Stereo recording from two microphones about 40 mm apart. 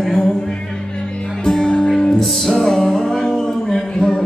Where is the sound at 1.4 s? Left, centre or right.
Left.